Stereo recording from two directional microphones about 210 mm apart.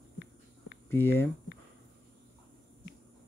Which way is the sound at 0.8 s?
10° left (ahead or behind).